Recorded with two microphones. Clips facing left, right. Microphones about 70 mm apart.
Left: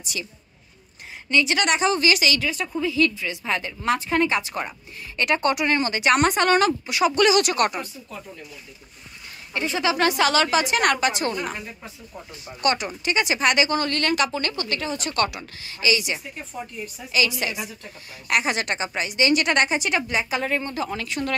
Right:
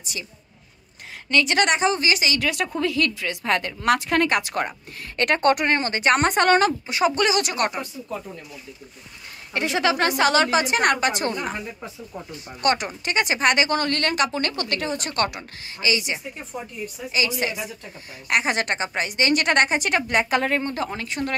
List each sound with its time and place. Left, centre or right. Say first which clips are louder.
1.4 s a woman's voice: right 3 dB; right
1.7 s a woman's voice: even; right
2.4 s a woman's voice: right 2 dB; right
9.5 s speech: right 2 dB; right
9.9 s a woman's voice: left 1 dB; right
12.6 s a woman's voice: even; right
20.9 s a woman's voice: even; right